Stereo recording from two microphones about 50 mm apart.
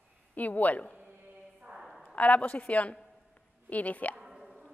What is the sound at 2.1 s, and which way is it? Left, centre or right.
A woman's voice, left.